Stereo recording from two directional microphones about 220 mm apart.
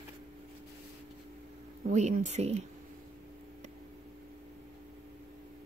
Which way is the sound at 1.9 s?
35° right (ahead or behind).